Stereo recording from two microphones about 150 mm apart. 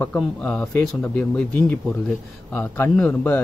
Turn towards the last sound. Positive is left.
turn(degrees=10)  # may be behind; listen again after turning